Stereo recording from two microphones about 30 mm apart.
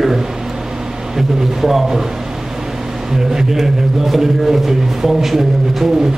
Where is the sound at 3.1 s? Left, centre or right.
Centre.